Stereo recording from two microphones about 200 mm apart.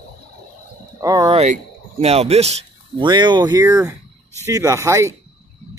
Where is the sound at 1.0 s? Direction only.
15° right (ahead or behind).